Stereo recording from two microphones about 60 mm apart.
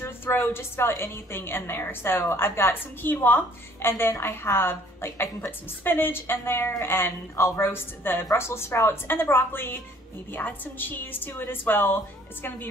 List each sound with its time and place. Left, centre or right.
0.0 s a woman's voice: left